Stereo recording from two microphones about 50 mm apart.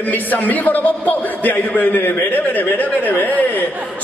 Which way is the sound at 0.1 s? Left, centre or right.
Left.